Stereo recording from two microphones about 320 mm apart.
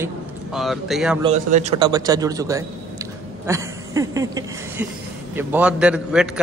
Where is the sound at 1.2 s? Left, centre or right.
Right.